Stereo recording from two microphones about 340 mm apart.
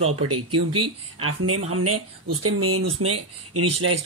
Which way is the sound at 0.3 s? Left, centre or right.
Right.